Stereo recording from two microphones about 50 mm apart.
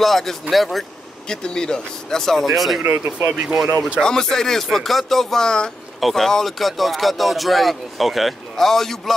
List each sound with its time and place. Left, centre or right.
0.0 s speech: centre
1.3 s speech: centre
2.8 s speech: right
3.4 s speech: centre
4.0 s speech: centre
5.9 s speech: centre